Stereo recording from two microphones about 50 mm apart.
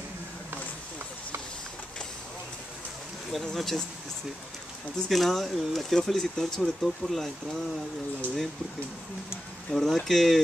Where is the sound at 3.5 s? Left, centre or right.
Centre.